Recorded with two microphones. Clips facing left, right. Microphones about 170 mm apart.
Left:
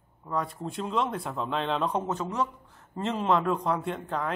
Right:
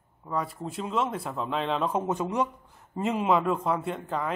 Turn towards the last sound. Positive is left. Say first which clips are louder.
# right 1 dB
turn(degrees=0)  # may be behind; listen again after turning